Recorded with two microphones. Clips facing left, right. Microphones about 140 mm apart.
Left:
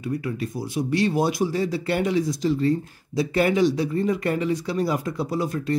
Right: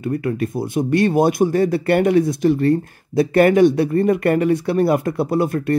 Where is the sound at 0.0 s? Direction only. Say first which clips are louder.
Right 6 dB; 55° right (ahead or behind).